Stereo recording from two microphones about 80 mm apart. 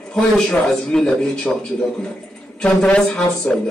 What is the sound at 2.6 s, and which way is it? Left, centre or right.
A man's voice, centre.